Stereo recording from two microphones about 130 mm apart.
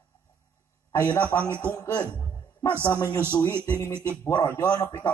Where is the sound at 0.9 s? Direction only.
15° left (ahead or behind).